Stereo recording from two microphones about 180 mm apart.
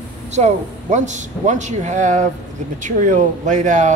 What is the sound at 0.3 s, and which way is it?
A man's voice, 40° right (ahead or behind).